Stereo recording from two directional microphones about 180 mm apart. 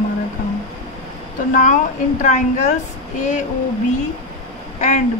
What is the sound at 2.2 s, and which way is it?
Speech, 40° left (ahead or behind).